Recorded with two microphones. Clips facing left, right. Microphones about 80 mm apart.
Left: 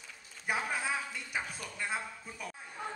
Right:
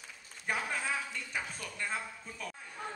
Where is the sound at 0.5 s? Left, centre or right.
Centre.